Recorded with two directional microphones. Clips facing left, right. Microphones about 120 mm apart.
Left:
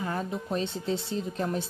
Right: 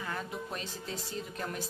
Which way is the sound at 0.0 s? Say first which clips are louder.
Left 6 dB; 30° left (ahead or behind).